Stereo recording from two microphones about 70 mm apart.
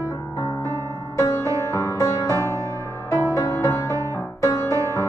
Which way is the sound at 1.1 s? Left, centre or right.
Left.